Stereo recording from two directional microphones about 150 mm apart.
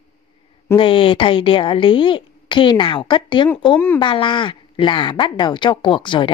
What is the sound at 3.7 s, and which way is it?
Speech, 15° left (ahead or behind).